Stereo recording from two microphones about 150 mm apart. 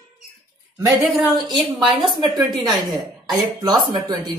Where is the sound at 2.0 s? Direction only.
30° right (ahead or behind).